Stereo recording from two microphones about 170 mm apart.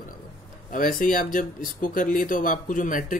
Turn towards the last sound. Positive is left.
turn(degrees=50)  # may be behind; listen again after turning